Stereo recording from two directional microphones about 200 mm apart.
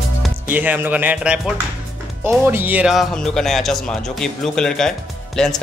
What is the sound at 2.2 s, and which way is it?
Speech, 10° right (ahead or behind).